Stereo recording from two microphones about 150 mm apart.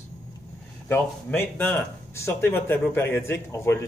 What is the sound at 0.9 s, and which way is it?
A man's voice, 15° left (ahead or behind).